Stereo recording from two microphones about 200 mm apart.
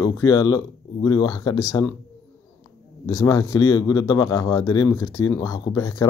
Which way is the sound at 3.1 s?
15° left (ahead or behind).